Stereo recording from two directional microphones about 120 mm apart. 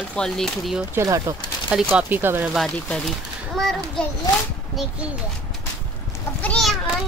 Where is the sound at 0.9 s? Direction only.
25° right (ahead or behind).